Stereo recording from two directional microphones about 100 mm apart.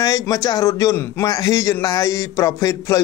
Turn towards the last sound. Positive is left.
turn(degrees=30)  # may be behind; listen again after turning